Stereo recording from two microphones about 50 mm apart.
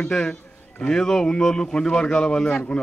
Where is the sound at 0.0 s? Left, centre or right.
Centre.